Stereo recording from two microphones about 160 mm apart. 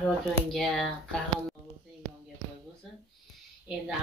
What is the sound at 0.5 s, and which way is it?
Speech, centre (ahead or behind).